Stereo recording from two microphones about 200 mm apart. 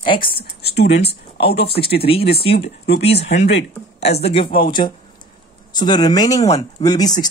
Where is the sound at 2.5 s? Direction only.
55° left (ahead or behind).